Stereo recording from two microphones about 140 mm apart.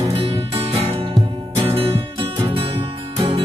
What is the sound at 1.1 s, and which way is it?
Music, 35° right (ahead or behind).